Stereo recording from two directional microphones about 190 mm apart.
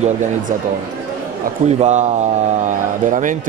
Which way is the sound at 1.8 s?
40° right (ahead or behind).